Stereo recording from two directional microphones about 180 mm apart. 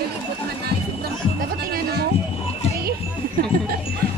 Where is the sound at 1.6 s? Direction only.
60° right (ahead or behind).